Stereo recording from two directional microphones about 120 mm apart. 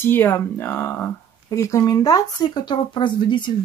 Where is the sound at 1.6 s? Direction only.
25° left (ahead or behind).